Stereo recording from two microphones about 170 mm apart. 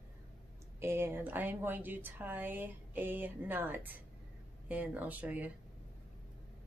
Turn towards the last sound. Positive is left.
turn(degrees=-10)  # may be behind; listen again after turning